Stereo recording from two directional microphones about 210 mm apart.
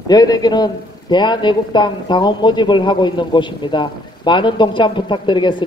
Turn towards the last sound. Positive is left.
turn(degrees=20)  # may be behind; listen again after turning